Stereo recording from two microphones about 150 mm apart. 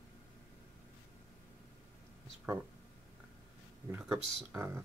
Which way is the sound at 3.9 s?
15° right (ahead or behind).